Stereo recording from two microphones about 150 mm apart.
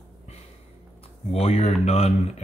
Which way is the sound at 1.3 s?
40° left (ahead or behind).